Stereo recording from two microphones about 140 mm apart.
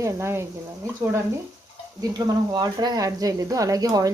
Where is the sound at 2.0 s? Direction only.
30° right (ahead or behind).